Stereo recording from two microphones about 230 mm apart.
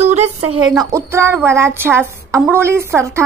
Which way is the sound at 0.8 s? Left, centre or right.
Centre.